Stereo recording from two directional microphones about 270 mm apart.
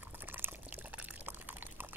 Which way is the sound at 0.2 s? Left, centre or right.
Centre.